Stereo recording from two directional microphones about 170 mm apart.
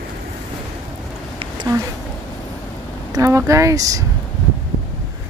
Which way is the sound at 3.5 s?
20° right (ahead or behind).